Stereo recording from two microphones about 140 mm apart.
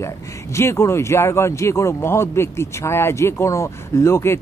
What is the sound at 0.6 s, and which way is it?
Speech, 20° left (ahead or behind).